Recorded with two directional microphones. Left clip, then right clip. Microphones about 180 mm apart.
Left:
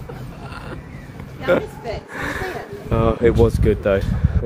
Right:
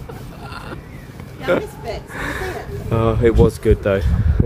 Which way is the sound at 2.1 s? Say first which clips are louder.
Even; centre (ahead or behind).